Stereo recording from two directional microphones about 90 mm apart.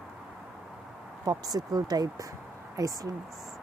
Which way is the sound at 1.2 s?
45° right (ahead or behind).